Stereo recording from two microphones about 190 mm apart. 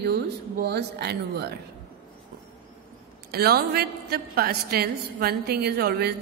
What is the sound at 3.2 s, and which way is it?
A woman's voice, 55° right (ahead or behind).